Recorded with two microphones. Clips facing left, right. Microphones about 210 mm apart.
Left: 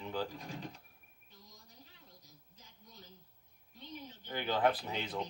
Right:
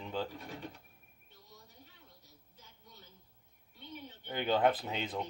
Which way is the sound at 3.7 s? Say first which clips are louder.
Even; 40° left (ahead or behind).